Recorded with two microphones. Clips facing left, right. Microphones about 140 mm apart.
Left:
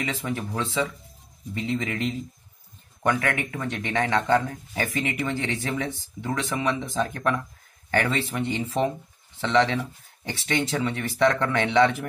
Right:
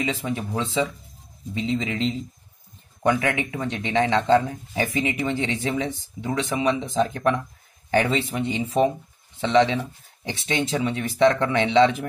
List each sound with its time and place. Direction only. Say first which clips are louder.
0.0 s speech: right 3 dB; 20° right (ahead or behind)